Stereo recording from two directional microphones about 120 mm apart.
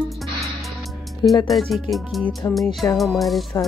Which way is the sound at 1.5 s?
Centre (ahead or behind).